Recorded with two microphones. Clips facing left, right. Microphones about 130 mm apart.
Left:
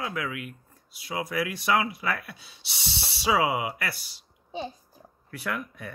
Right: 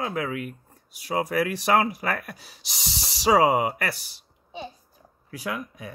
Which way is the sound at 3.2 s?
40° right (ahead or behind).